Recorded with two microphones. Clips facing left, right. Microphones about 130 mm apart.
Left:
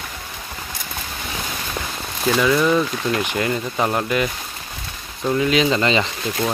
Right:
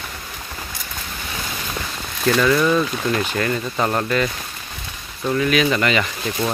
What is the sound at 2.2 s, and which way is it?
Speech, 5° left (ahead or behind).